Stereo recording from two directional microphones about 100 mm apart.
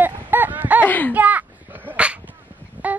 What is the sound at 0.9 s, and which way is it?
Speech, 20° left (ahead or behind).